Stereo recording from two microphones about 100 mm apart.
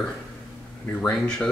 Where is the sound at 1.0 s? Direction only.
5° left (ahead or behind).